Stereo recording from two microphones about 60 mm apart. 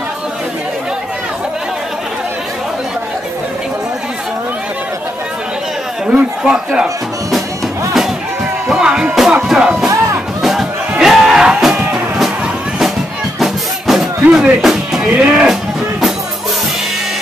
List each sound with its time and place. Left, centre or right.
6.0 s a man's voice: centre
8.6 s music: centre
13.4 s music: centre
14.3 s speech: centre
14.6 s music: centre
15.1 s speech: centre